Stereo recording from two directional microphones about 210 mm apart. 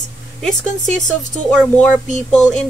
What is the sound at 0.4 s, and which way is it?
Speech, centre (ahead or behind).